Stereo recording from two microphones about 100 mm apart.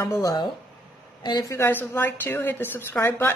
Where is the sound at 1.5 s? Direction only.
25° left (ahead or behind).